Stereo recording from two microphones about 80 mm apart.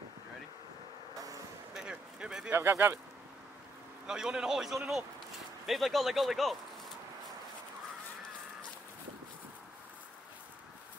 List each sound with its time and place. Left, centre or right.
1.1 s vehicle: right
1.7 s a sound: centre
2.5 s speech: right
4.1 s a man's voice: centre